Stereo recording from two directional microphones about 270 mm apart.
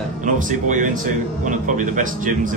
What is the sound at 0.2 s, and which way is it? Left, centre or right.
A man's voice, right.